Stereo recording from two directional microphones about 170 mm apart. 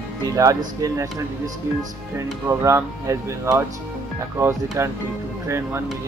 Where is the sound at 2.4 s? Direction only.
15° right (ahead or behind).